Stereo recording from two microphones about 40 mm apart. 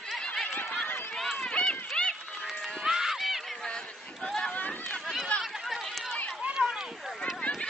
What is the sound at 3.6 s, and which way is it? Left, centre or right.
Chatter, left.